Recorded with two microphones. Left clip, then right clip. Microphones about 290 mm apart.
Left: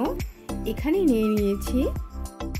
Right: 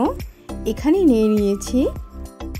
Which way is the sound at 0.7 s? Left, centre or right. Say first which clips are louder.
Right 6 dB; centre.